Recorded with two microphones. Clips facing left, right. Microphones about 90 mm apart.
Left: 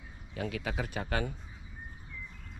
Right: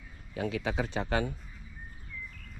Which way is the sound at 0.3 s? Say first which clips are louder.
Right 3 dB; 30° right (ahead or behind).